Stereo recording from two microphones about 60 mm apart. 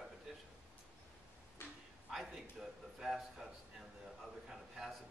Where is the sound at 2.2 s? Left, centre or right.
Centre.